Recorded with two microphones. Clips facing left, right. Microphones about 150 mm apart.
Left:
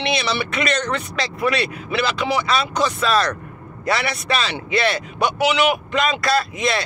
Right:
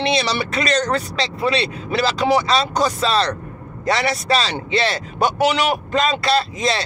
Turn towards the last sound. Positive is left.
turn(degrees=-30)  # may be behind; listen again after turning